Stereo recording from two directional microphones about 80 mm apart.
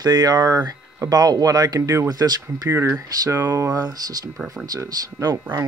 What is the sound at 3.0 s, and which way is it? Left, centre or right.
Speech, right.